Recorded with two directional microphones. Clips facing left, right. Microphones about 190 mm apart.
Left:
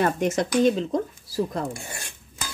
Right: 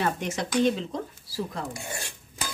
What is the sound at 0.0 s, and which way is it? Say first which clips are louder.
Speech: left 6 dB; 50° left (ahead or behind).